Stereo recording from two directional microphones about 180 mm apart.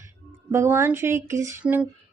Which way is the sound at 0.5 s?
15° right (ahead or behind).